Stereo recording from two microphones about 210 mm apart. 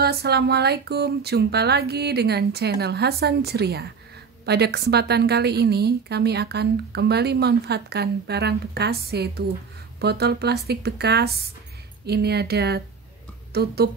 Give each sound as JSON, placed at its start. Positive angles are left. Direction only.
{"t": 0.0, "sound": "a woman's voice", "side_deg": -50}